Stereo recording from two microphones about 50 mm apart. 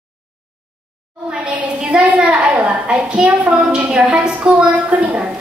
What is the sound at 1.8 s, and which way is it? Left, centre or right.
A woman's voice, centre.